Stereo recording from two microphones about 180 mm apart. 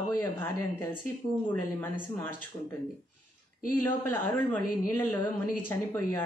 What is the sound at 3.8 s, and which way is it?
A woman's voice, 10° left (ahead or behind).